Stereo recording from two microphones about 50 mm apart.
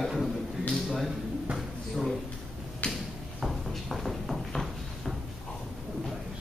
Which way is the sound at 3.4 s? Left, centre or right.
Centre.